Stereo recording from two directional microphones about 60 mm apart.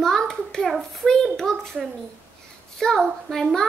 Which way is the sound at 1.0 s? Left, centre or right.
Centre.